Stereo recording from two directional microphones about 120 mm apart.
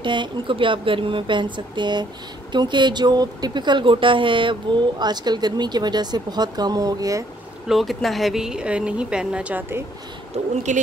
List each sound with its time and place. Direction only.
0.0 s speech: 40° right (ahead or behind)
7.6 s speech: centre (ahead or behind); by 9.8 s 20° right (ahead or behind)
10.3 s speech: 70° right (ahead or behind)